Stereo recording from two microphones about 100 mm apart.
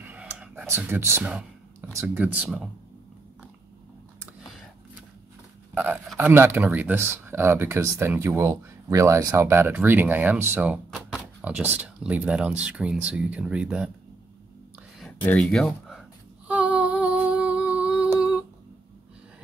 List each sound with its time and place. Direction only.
0.0 s clicking: 15° right (ahead or behind)
2.1 s speech: 15° right (ahead or behind)
6.1 s speech: 20° right (ahead or behind)
9.5 s speech: 20° right (ahead or behind)
15.3 s speech: 5° left (ahead or behind)
16.4 s humming: 15° right (ahead or behind)